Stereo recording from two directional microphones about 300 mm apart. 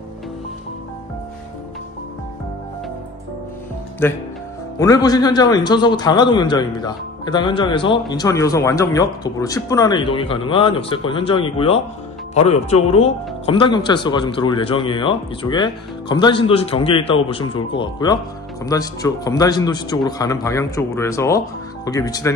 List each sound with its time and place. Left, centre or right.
4.0 s speech: centre